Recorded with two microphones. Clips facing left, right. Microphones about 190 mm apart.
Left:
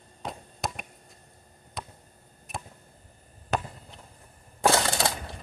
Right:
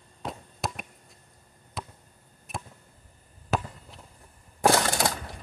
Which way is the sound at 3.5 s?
Centre (ahead or behind).